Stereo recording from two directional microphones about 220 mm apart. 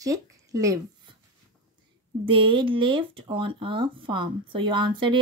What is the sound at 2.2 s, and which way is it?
Speech, 25° right (ahead or behind).